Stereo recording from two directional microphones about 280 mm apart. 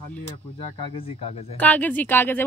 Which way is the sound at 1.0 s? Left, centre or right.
Left.